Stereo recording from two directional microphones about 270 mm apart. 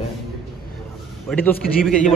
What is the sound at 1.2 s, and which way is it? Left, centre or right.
Speech, centre.